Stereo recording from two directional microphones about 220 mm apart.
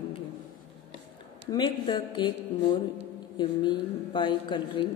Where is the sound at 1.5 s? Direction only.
20° left (ahead or behind).